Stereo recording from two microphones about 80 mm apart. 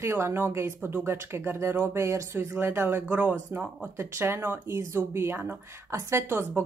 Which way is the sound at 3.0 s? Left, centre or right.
Centre.